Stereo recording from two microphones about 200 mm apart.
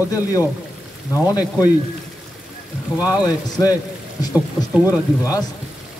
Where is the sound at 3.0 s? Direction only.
20° left (ahead or behind).